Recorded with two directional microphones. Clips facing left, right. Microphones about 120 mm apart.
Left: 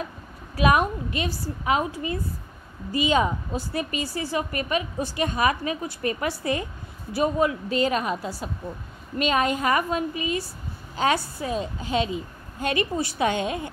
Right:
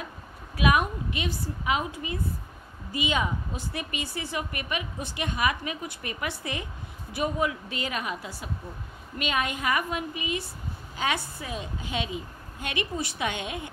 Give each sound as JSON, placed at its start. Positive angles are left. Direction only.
{"t": 0.6, "sound": "a woman's voice", "side_deg": 40}